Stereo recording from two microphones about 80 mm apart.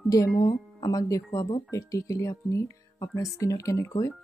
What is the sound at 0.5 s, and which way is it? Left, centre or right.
A woman's voice, left.